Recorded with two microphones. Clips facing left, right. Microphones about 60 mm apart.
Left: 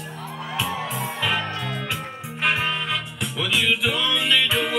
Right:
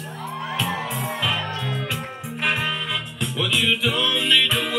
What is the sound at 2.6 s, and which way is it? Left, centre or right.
Music, centre.